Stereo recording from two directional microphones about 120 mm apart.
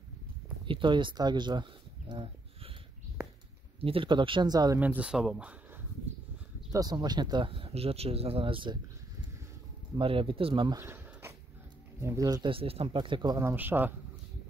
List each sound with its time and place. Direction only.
0.7 s a sound: 45° right (ahead or behind)
3.8 s speech: 50° right (ahead or behind)
4.7 s speech: 15° right (ahead or behind)
6.7 s speech: 35° right (ahead or behind)
9.9 s speech: 45° right (ahead or behind)
10.8 s a sound: 20° right (ahead or behind)
12.0 s speech: 25° right (ahead or behind)
12.4 s speech: 50° right (ahead or behind)
13.4 s speech: 20° right (ahead or behind)